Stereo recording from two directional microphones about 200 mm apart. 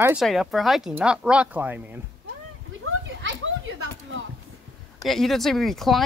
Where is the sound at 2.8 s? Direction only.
65° right (ahead or behind).